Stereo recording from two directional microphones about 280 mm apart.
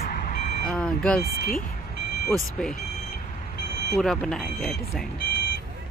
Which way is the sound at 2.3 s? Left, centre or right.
Centre.